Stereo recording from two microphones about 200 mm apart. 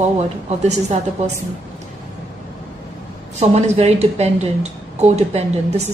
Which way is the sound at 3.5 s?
30° right (ahead or behind).